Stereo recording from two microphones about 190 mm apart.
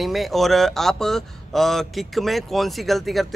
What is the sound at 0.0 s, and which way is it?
Speech, centre (ahead or behind).